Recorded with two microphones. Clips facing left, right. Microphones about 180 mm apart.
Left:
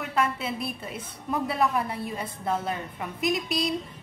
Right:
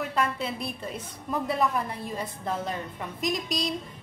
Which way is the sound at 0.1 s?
5° left (ahead or behind).